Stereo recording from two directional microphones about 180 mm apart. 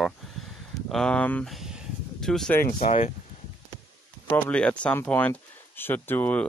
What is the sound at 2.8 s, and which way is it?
Speech, 35° left (ahead or behind).